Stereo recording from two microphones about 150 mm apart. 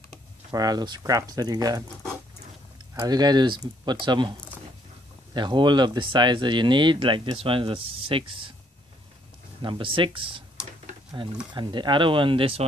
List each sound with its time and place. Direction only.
0.5 s speech: 25° right (ahead or behind)
3.0 s speech: 25° right (ahead or behind)
9.6 s speech: 35° right (ahead or behind)